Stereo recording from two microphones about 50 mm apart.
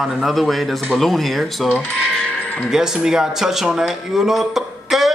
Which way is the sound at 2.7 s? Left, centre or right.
Centre.